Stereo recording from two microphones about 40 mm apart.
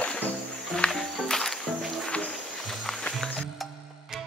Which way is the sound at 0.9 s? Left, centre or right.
Centre.